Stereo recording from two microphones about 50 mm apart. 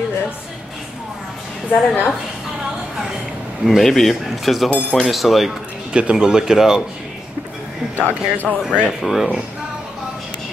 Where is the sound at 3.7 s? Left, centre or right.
Centre.